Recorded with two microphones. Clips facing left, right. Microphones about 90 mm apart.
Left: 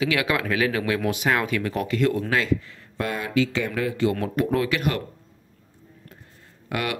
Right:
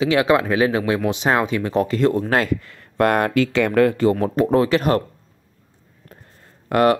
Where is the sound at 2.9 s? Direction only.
60° right (ahead or behind).